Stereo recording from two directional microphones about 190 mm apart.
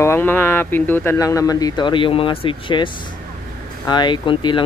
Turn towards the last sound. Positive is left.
turn(degrees=25)  # may be behind; listen again after turning